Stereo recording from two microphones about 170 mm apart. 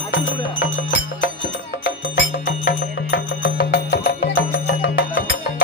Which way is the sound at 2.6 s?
60° left (ahead or behind).